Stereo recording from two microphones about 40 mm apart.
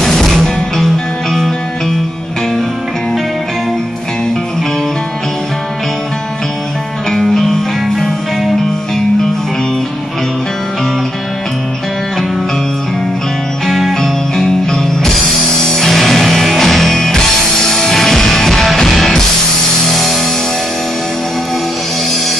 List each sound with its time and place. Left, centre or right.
0.0 s music: centre
7.1 s music: centre
13.7 s music: centre
14.3 s music: centre
15.0 s music: centre